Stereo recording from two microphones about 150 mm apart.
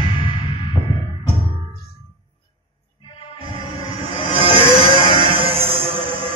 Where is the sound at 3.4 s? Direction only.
35° right (ahead or behind).